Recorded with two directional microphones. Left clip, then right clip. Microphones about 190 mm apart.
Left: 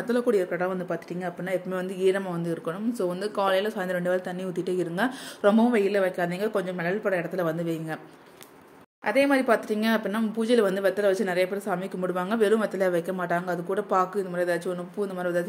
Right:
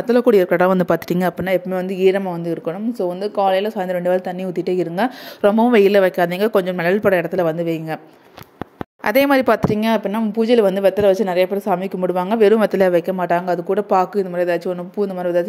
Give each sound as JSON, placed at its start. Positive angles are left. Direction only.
{"t": 0.1, "sound": "speech", "side_deg": -45}
{"t": 1.7, "sound": "a woman's voice", "side_deg": -35}
{"t": 7.4, "sound": "a woman's voice", "side_deg": -35}
{"t": 9.0, "sound": "speech", "side_deg": -60}
{"t": 9.8, "sound": "a woman's voice", "side_deg": -30}